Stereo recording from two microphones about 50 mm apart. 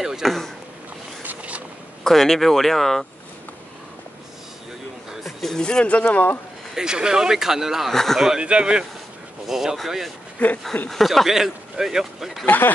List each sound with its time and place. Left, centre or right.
0.0 s speech: centre
1.2 s vehicle: right
2.0 s speech: centre
5.4 s speech: centre
5.9 s speech: left
6.7 s speech: centre
7.9 s speech: centre
8.4 s speech: right
9.5 s speech: centre
10.4 s a sound: left
10.9 s speech: centre
11.2 s speech: centre
12.4 s speech: left